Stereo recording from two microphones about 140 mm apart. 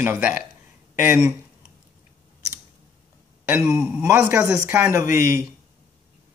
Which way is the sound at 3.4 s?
20° right (ahead or behind).